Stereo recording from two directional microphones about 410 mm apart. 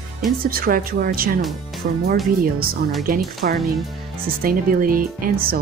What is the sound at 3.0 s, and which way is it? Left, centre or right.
Speech, right.